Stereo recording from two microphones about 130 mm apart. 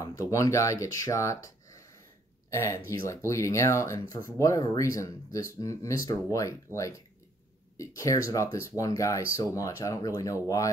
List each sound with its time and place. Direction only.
0.0 s speech: 25° left (ahead or behind)